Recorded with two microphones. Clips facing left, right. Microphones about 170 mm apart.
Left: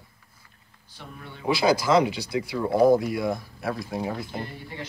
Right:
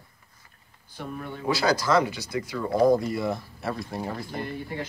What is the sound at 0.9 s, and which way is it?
Speech, 50° right (ahead or behind).